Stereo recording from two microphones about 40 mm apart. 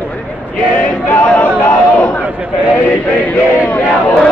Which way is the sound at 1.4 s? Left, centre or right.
Left.